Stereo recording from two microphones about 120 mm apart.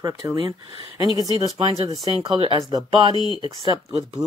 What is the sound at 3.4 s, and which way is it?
Speech, 40° right (ahead or behind).